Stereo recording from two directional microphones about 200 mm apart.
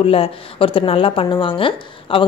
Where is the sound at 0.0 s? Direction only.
30° left (ahead or behind).